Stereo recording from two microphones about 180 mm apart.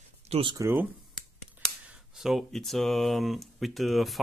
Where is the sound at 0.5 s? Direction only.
15° right (ahead or behind).